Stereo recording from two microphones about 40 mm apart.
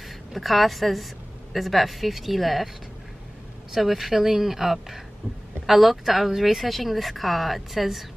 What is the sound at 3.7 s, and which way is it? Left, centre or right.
Speech, centre.